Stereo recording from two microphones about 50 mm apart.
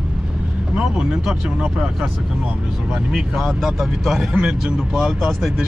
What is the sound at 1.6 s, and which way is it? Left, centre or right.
Speech, centre.